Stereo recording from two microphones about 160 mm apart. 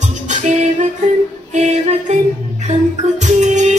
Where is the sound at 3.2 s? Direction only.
50° right (ahead or behind).